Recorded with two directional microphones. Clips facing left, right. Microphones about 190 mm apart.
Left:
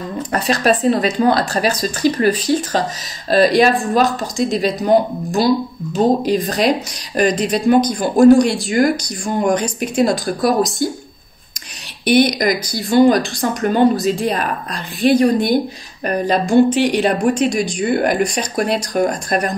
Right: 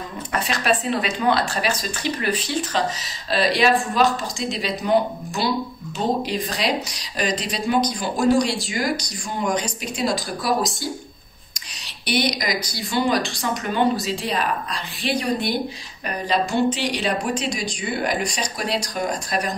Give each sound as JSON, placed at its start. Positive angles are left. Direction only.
{"t": 0.3, "sound": "speech", "side_deg": 40}
{"t": 12.1, "sound": "speech", "side_deg": 50}